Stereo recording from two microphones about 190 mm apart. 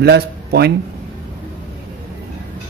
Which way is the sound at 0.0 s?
60° right (ahead or behind).